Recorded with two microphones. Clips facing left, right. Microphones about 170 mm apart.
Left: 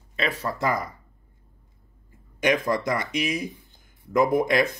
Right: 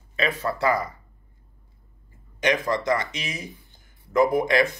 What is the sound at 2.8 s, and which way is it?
Speech, 50° left (ahead or behind).